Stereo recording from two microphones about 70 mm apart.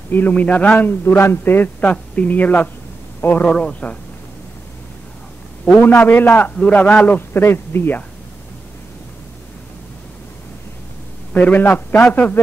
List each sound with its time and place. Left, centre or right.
0.1 s a man's voice: left
3.4 s speech: centre
5.8 s a man's voice: left
7.2 s speech: left
11.3 s a man's voice: left